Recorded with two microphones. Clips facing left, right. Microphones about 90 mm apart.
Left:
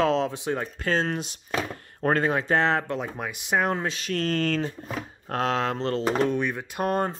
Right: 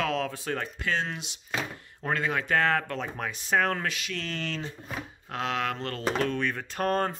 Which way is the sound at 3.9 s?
40° left (ahead or behind).